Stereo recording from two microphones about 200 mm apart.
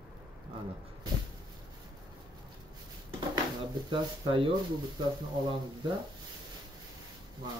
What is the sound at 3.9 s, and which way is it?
Speech, 25° right (ahead or behind).